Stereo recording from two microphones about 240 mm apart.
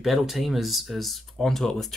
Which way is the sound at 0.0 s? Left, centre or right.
Centre.